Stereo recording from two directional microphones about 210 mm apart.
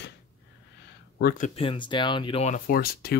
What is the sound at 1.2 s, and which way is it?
Speech, 45° left (ahead or behind).